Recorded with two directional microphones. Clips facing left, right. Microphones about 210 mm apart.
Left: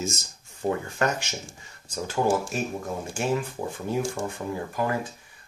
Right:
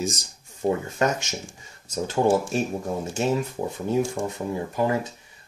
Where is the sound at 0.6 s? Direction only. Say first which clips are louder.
Right 3 dB; 20° right (ahead or behind).